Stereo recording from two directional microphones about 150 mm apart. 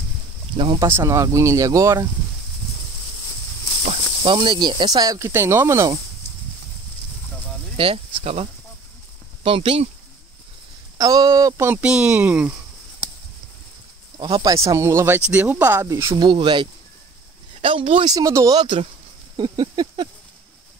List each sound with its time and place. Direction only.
0.7 s speech: 20° right (ahead or behind)
3.8 s speech: 40° right (ahead or behind); by 5.9 s 20° right (ahead or behind)
7.7 s speech: 35° right (ahead or behind)
11.0 s speech: 25° right (ahead or behind)
14.1 s speech: 25° right (ahead or behind)
18.1 s speech: 20° right (ahead or behind)
19.3 s a sound: 30° right (ahead or behind)